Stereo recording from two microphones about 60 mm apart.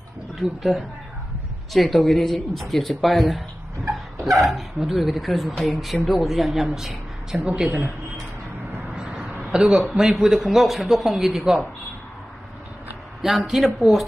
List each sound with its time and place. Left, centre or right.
0.4 s speech: centre
9.3 s a sound: centre
9.9 s speech: centre
13.2 s speech: centre